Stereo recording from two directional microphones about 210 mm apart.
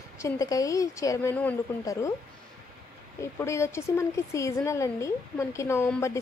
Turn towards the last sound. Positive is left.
turn(degrees=10)  # may be behind; listen again after turning